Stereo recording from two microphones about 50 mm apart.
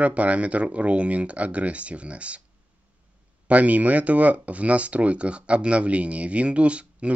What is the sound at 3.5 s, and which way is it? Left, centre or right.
Speech, right.